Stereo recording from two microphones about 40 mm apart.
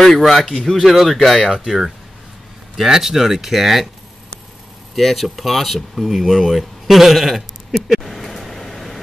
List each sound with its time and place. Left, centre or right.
0.0 s speech: centre
0.5 s speech: centre
0.7 s speech: centre
2.7 s speech: centre
4.9 s speech: centre
7.9 s a sound: centre